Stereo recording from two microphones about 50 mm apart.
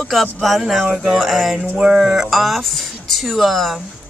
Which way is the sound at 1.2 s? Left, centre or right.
Centre.